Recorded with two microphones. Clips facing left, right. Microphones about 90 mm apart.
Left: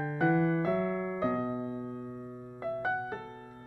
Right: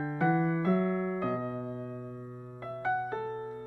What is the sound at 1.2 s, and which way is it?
Electric piano, 15° left (ahead or behind).